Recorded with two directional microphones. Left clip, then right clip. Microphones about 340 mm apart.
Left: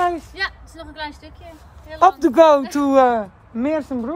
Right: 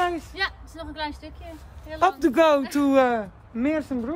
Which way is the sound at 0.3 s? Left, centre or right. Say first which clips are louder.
Left 3 dB; centre.